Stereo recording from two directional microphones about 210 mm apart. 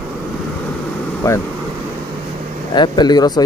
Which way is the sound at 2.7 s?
20° left (ahead or behind).